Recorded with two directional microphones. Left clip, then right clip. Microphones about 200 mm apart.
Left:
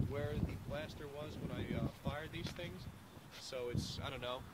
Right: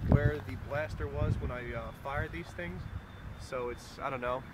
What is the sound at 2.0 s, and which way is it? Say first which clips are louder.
Speech: right 7 dB; 20° right (ahead or behind).